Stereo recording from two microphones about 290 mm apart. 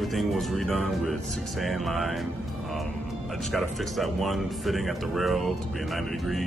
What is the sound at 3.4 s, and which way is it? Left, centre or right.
Speech, centre.